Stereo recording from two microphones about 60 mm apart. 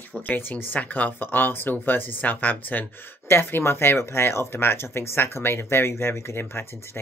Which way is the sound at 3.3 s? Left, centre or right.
Left.